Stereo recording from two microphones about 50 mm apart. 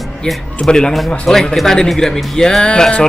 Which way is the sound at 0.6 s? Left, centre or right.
Centre.